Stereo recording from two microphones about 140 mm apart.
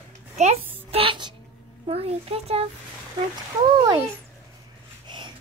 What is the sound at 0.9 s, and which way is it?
A child's voice, 40° right (ahead or behind).